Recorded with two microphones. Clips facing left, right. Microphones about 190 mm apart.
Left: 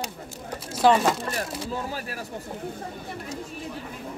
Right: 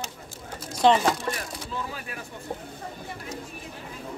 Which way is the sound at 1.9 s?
40° left (ahead or behind).